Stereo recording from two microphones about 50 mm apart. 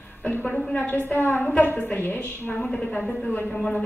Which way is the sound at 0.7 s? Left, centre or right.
Left.